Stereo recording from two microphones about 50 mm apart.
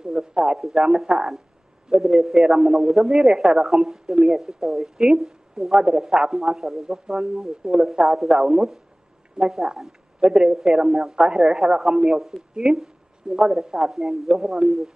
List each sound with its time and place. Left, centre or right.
0.0 s a sound: centre
0.6 s speech: centre
0.8 s speech: centre